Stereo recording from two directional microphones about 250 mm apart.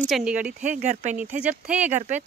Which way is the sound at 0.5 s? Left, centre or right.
Right.